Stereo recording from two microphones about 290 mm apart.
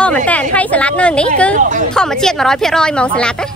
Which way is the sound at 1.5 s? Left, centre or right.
Right.